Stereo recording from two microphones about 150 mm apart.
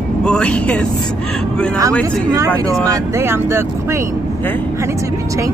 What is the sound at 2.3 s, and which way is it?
Speech, 25° right (ahead or behind).